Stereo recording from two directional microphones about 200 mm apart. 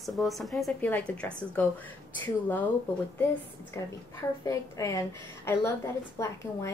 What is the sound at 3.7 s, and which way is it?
A woman's voice, 15° left (ahead or behind).